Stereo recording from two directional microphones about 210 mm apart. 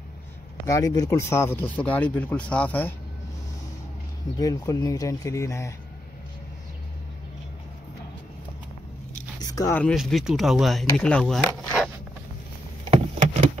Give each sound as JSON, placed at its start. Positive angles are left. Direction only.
{"t": 0.7, "sound": "speech", "side_deg": 15}
{"t": 4.4, "sound": "speech", "side_deg": 15}
{"t": 9.4, "sound": "speech", "side_deg": 15}
{"t": 9.9, "sound": "speech", "side_deg": 0}
{"t": 12.8, "sound": "vehicle", "side_deg": -30}